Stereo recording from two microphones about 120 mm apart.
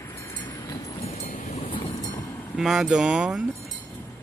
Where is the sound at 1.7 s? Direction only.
40° left (ahead or behind).